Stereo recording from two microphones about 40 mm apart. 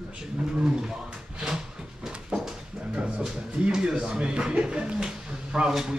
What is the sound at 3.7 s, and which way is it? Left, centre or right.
Speech, centre.